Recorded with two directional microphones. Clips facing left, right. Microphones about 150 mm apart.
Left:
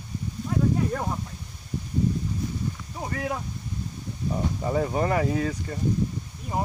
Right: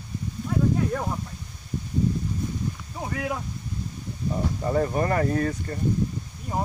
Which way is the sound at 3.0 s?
5° right (ahead or behind).